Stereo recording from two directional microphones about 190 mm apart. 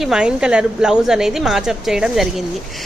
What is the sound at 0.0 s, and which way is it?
A woman's voice, 5° right (ahead or behind).